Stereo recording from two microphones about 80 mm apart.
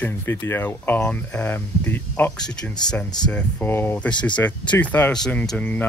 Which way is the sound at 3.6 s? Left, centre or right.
Left.